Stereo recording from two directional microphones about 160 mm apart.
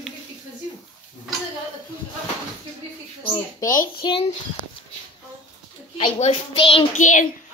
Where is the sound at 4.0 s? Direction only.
30° left (ahead or behind).